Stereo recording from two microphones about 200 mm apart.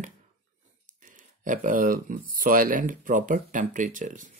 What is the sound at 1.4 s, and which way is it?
Speech, 40° right (ahead or behind).